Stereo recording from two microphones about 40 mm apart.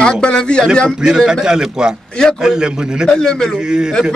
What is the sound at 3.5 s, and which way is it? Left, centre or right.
Speech, centre.